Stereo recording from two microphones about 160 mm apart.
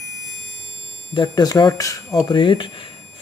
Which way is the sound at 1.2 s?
25° left (ahead or behind).